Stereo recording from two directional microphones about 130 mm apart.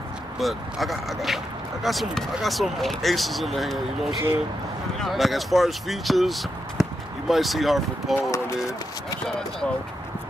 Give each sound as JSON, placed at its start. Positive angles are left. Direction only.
{"t": 0.4, "sound": "speech", "side_deg": 0}
{"t": 8.2, "sound": "speech", "side_deg": 25}